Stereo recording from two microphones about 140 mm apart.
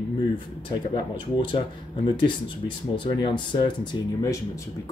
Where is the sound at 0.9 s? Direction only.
35° left (ahead or behind).